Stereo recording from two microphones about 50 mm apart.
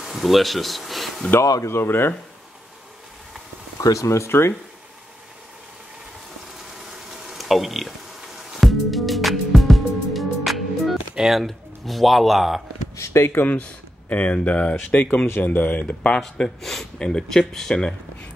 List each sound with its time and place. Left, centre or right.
0.0 s speech: centre
1.4 s speech: left
1.9 s speech: left
3.9 s speech: left
4.3 s speech: left
7.2 s a sound: centre
8.5 s music: centre
11.4 s speech: centre
12.9 s a sound: left
13.2 s speech: left
14.0 s speech: left
16.2 s speech: centre